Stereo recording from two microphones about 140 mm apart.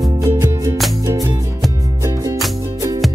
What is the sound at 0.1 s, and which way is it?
Music, 20° right (ahead or behind).